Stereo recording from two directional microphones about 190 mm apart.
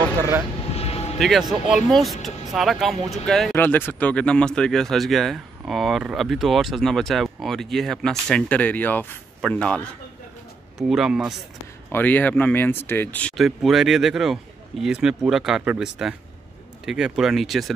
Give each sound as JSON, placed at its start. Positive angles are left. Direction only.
{"t": 0.7, "sound": "vehicle", "side_deg": 30}
{"t": 1.9, "sound": "speech", "side_deg": 0}
{"t": 3.5, "sound": "speech", "side_deg": 10}
{"t": 10.8, "sound": "speech", "side_deg": 0}
{"t": 11.9, "sound": "speech", "side_deg": 10}